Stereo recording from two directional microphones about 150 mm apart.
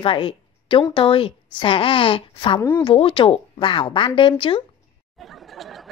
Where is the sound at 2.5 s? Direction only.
15° left (ahead or behind).